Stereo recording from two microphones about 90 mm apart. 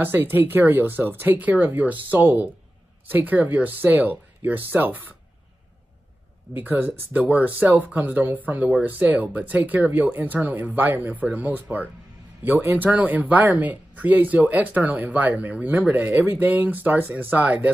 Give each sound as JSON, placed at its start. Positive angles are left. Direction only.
{"t": 0.0, "sound": "speech", "side_deg": -25}
{"t": 6.6, "sound": "speech", "side_deg": -20}